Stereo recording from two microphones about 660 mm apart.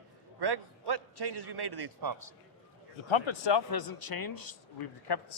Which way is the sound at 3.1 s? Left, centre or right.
Left.